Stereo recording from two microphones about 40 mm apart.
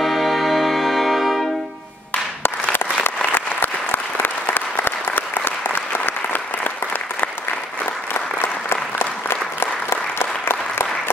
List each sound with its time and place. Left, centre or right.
0.0 s music: centre
2.4 s applause: left
8.1 s applause: left
8.9 s applause: left